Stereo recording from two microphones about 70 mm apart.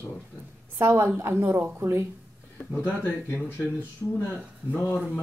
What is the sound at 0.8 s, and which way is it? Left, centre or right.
Speech, right.